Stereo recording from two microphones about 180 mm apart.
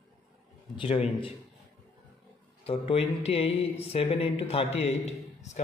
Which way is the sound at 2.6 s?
35° left (ahead or behind).